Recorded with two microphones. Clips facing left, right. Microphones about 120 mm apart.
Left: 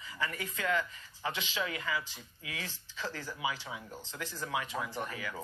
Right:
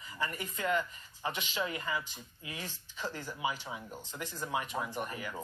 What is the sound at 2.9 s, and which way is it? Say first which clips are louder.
Speech: even; 15° right (ahead or behind).